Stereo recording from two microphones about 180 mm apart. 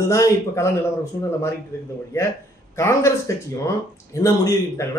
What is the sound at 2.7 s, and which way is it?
Speech, 15° left (ahead or behind).